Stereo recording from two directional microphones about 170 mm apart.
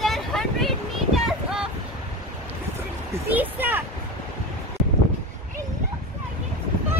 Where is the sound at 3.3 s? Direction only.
10° right (ahead or behind).